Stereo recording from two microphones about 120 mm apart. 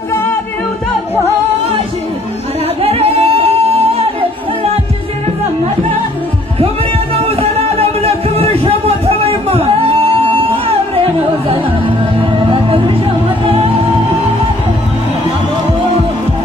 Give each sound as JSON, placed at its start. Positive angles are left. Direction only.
{"t": 0.1, "sound": "music", "side_deg": 20}
{"t": 2.8, "sound": "singing", "side_deg": -55}
{"t": 7.2, "sound": "a sound", "side_deg": -55}
{"t": 12.2, "sound": "music", "side_deg": -45}